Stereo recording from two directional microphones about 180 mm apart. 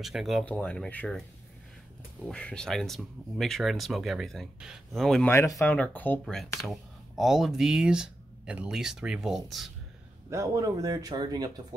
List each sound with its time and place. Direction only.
0.0 s speech: centre (ahead or behind)
2.2 s speech: 5° left (ahead or behind)
5.3 s speech: 15° left (ahead or behind)
6.7 s speech: centre (ahead or behind)
10.3 s speech: 20° right (ahead or behind)